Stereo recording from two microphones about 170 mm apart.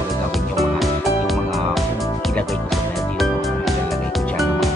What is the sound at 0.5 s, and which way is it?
Music, centre (ahead or behind).